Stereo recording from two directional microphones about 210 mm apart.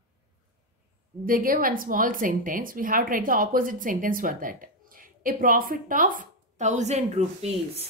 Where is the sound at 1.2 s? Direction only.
40° right (ahead or behind).